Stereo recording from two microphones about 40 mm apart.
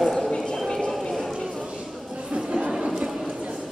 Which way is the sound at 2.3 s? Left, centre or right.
Right.